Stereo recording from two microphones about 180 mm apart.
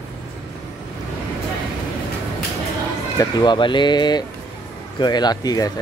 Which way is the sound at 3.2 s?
25° left (ahead or behind).